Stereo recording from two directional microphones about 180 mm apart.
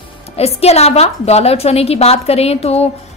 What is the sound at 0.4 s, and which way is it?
A woman's voice, 35° left (ahead or behind).